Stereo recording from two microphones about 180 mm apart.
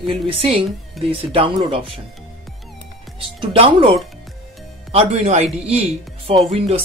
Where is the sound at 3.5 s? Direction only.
30° right (ahead or behind).